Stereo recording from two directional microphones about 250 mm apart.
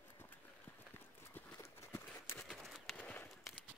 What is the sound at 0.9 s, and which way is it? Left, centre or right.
Clip-clop, centre.